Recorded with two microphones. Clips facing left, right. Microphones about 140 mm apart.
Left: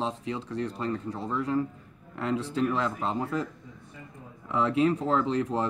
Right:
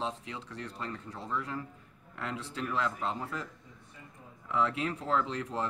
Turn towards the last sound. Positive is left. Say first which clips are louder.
# left 6 dB
turn(degrees=30)  # may be behind; listen again after turning